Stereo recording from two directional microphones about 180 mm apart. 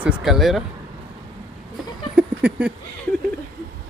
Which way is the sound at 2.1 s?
5° right (ahead or behind).